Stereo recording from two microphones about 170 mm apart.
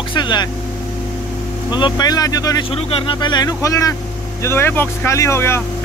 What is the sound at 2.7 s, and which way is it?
Speech, 30° left (ahead or behind).